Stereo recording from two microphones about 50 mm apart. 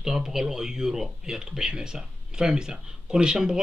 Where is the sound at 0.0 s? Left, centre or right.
Centre.